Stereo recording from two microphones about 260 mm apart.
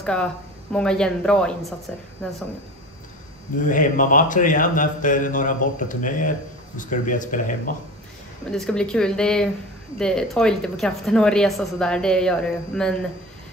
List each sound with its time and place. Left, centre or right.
0.0 s speech: centre
3.6 s a man's voice: left
8.5 s speech: centre